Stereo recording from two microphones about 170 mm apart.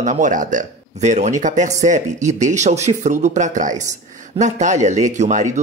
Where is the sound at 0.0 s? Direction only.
45° right (ahead or behind).